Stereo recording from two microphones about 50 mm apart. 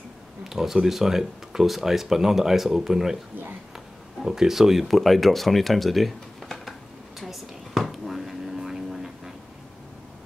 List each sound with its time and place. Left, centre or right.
0.4 s speech: centre
4.2 s speech: centre
7.2 s whispering: centre